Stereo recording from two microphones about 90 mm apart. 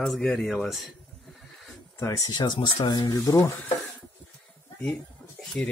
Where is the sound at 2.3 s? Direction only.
55° left (ahead or behind).